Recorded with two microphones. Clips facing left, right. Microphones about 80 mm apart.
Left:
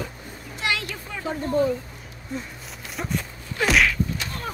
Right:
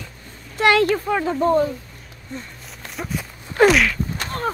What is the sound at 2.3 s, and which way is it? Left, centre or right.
Speech, centre.